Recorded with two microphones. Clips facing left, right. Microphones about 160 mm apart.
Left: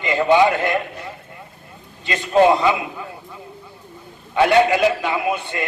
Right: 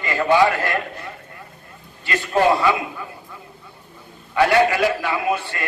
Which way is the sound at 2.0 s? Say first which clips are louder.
Left 3 dB; 20° left (ahead or behind).